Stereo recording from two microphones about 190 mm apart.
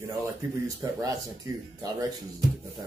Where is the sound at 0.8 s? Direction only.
15° right (ahead or behind).